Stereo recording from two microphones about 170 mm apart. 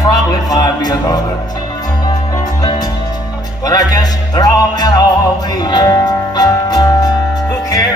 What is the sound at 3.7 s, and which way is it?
Music, 20° left (ahead or behind).